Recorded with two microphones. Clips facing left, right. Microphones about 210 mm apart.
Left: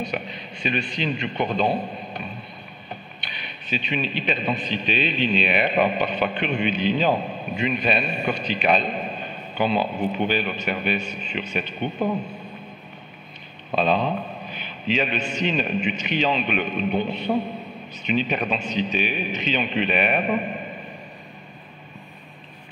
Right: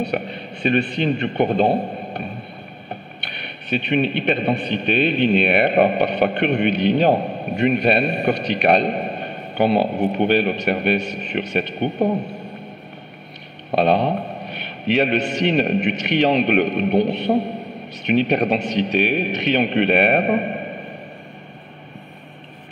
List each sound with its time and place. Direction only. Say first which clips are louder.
0.0 s a man's voice: right 6 dB; 60° right (ahead or behind)
3.7 s a man's voice: right 7 dB; 60° right (ahead or behind)
13.7 s a man's voice: right 4 dB; 70° right (ahead or behind)